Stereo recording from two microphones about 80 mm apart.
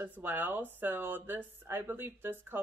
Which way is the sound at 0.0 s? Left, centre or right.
Right.